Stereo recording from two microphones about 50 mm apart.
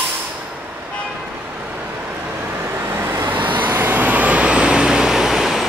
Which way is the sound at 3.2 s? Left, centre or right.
Right.